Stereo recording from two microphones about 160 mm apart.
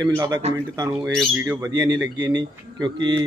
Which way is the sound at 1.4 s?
20° right (ahead or behind).